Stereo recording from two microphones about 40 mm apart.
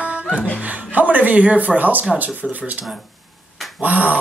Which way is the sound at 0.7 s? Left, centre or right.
Right.